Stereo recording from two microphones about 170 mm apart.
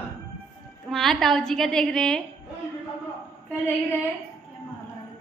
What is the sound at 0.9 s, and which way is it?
A woman's voice, centre (ahead or behind).